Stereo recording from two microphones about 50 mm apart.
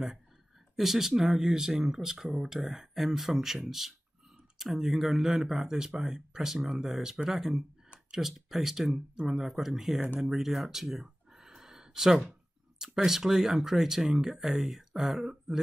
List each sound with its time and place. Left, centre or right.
0.7 s speech: centre
10.2 s a sound: centre
12.7 s speech: centre